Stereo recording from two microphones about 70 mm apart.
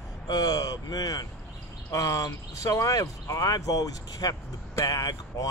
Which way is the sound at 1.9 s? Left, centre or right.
Left.